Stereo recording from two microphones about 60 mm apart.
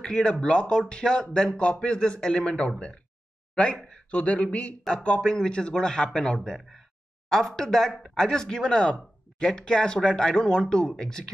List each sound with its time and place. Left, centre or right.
0.0 s speech: centre
4.1 s speech: left